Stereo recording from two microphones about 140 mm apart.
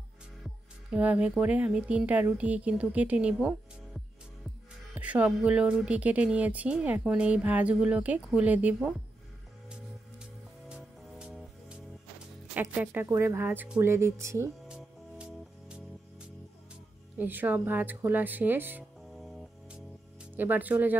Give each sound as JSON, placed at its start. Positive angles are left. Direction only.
{"t": 0.9, "sound": "speech", "side_deg": -10}
{"t": 10.7, "sound": "music", "side_deg": -5}
{"t": 12.5, "sound": "speech", "side_deg": -10}
{"t": 14.7, "sound": "music", "side_deg": -5}
{"t": 17.2, "sound": "speech", "side_deg": -10}
{"t": 19.1, "sound": "music", "side_deg": 0}
{"t": 20.3, "sound": "speech", "side_deg": -10}